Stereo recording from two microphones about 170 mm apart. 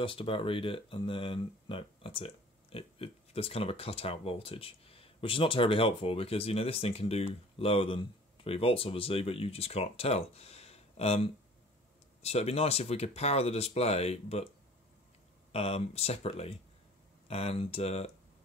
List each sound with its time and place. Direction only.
0.0 s speech: 30° left (ahead or behind)
15.5 s speech: 35° left (ahead or behind)